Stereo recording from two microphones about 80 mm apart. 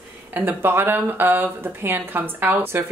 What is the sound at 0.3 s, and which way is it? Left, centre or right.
Speech, right.